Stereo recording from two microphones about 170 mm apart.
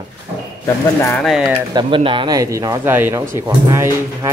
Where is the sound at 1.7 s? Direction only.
25° right (ahead or behind).